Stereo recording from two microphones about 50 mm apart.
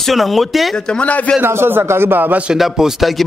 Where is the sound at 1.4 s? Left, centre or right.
Right.